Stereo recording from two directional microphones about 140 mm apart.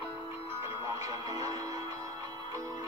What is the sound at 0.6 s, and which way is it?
Music, 20° right (ahead or behind).